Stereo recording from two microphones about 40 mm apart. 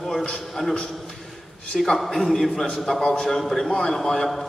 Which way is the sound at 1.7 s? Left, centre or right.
Centre.